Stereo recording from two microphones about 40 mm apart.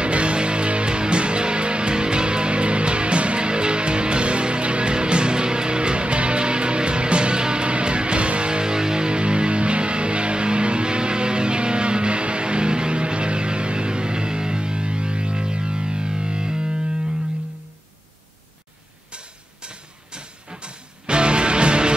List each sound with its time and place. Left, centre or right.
0.0 s music: right
19.1 s music: right